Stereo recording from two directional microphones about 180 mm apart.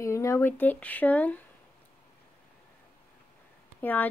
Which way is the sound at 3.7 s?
10° left (ahead or behind).